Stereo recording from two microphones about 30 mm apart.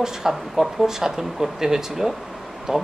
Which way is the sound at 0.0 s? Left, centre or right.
Centre.